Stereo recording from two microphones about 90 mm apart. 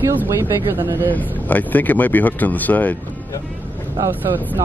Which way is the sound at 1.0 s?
20° left (ahead or behind).